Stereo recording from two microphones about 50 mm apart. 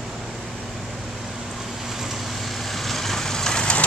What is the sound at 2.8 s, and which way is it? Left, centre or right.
Vehicle, centre.